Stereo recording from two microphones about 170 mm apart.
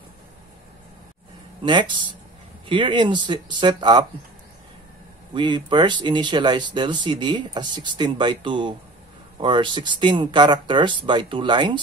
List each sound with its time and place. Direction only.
1.6 s speech: 30° right (ahead or behind)
5.3 s speech: 25° right (ahead or behind)